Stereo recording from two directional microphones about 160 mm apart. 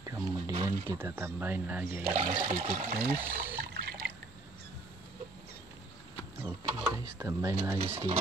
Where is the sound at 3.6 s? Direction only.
70° right (ahead or behind).